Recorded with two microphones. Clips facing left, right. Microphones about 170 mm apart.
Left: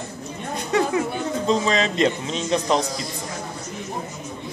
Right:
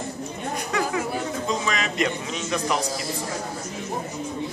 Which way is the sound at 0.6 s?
25° left (ahead or behind).